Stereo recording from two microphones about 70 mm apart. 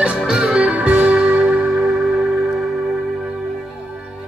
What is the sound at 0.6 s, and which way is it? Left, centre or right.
Music, right.